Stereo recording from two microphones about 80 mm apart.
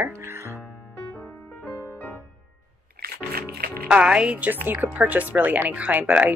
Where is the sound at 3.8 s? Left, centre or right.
Centre.